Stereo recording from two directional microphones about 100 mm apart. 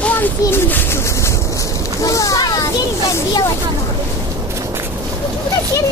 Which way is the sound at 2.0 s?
35° left (ahead or behind).